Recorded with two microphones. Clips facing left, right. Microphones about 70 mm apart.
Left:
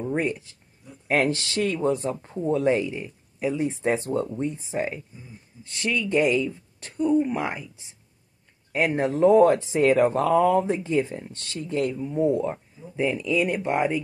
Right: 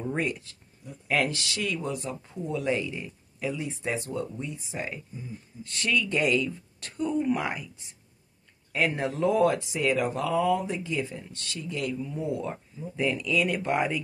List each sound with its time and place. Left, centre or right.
0.2 s speech: left
8.7 s speech: left